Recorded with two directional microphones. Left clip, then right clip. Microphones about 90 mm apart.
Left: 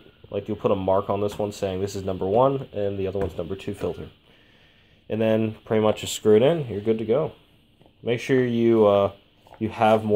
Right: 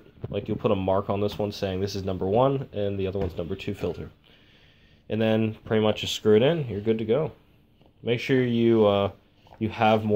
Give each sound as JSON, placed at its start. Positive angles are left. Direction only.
{"t": 0.3, "sound": "speech", "side_deg": 20}
{"t": 5.0, "sound": "speech", "side_deg": 35}